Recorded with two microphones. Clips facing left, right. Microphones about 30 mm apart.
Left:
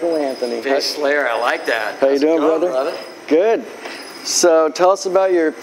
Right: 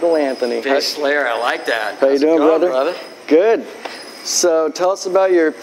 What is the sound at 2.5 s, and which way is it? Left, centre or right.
Speech, right.